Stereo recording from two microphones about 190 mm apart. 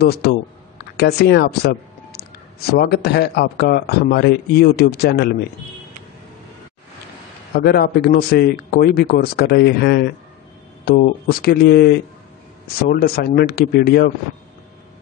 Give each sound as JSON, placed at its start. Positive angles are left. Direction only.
{"t": 0.0, "sound": "a man's voice", "side_deg": 55}
{"t": 7.5, "sound": "a man's voice", "side_deg": 55}